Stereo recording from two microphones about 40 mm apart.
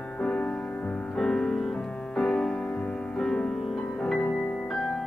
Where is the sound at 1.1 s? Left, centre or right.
Centre.